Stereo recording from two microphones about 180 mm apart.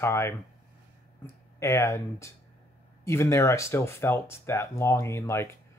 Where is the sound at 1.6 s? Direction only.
15° left (ahead or behind).